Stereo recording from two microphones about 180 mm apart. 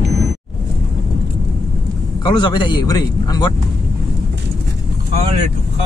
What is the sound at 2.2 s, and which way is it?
A man's voice, 25° left (ahead or behind).